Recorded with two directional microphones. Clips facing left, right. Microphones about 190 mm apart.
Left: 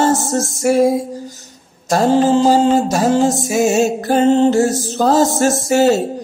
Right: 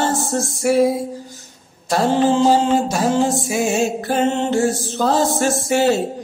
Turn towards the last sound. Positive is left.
turn(degrees=40)  # may be behind; listen again after turning